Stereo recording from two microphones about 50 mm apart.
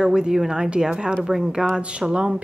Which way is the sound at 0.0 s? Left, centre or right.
Centre.